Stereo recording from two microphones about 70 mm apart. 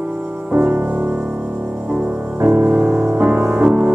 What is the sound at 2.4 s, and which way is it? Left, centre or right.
Music, right.